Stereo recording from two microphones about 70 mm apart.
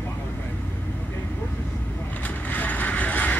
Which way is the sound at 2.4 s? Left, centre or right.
Left.